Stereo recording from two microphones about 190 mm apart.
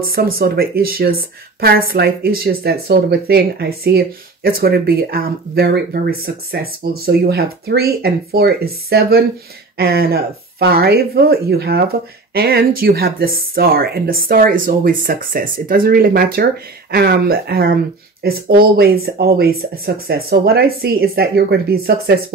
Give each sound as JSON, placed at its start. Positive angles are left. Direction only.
{"t": 0.1, "sound": "a woman's voice", "side_deg": -50}